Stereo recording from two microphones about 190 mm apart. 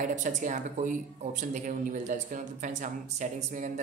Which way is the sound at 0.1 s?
40° right (ahead or behind).